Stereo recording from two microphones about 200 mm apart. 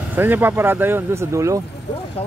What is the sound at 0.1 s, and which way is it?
Speech, 10° right (ahead or behind).